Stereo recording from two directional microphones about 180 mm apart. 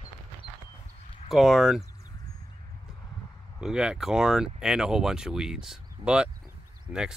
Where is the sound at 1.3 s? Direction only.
Centre (ahead or behind).